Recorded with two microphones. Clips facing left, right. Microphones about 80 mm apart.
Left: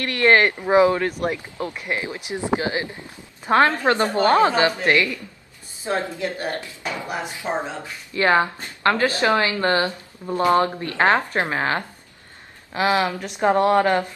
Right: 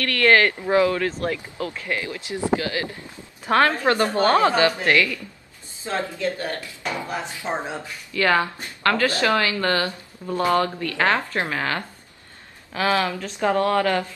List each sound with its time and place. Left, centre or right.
0.0 s speech: left